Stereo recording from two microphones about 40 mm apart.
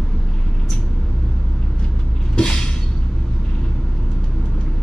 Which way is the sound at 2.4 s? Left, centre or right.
Left.